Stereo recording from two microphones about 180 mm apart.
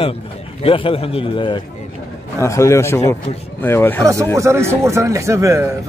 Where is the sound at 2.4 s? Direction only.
15° left (ahead or behind).